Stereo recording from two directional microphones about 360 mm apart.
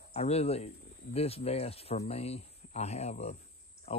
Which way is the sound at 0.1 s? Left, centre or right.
Centre.